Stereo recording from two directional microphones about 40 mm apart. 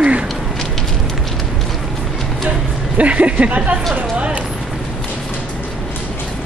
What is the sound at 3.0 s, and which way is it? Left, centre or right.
Speech, right.